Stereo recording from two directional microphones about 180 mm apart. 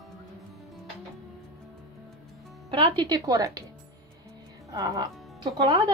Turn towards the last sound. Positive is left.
turn(degrees=-25)  # may be behind; listen again after turning